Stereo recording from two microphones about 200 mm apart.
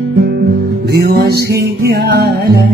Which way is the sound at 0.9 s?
50° right (ahead or behind).